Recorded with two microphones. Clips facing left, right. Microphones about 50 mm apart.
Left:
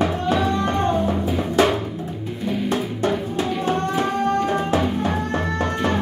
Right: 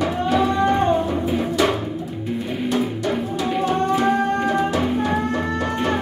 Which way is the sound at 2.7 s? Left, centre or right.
Left.